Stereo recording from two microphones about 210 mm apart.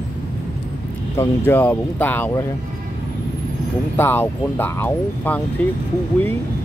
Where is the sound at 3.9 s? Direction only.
10° left (ahead or behind).